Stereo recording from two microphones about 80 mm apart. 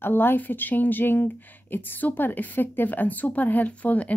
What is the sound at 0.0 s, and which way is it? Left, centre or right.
Speech, left.